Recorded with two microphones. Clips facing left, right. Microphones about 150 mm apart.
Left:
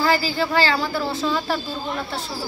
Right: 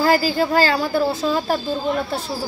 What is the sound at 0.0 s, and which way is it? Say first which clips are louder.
A woman's voice: right 4 dB; 45° right (ahead or behind).